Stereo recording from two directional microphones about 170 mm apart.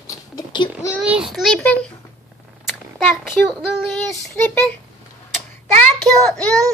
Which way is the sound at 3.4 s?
Centre (ahead or behind).